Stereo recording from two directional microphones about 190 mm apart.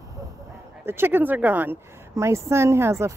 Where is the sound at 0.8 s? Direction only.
10° right (ahead or behind).